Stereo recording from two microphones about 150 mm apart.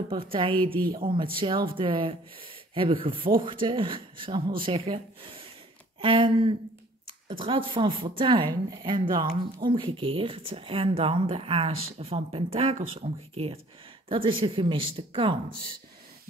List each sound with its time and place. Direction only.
0.1 s speech: 35° right (ahead or behind)